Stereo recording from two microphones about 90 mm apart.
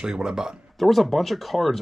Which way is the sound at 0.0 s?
10° right (ahead or behind).